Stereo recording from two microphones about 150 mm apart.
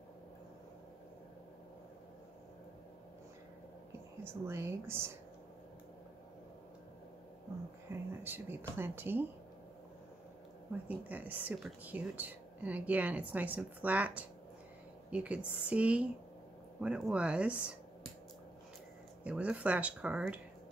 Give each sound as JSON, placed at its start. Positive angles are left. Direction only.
{"t": 4.2, "sound": "a woman's voice", "side_deg": -15}
{"t": 7.9, "sound": "a woman's voice", "side_deg": -15}
{"t": 10.9, "sound": "a woman's voice", "side_deg": -10}
{"t": 19.2, "sound": "a woman's voice", "side_deg": -10}